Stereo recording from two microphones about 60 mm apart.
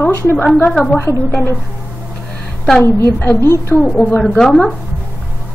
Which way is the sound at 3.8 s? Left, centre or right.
Left.